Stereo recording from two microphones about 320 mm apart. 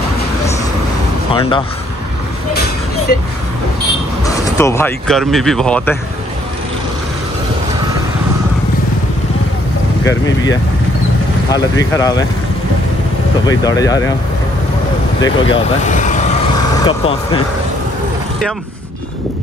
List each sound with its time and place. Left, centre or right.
1.3 s speech: centre
4.2 s speech: centre
10.0 s speech: centre
11.8 s speech: centre
13.5 s speech: centre
15.2 s speech: centre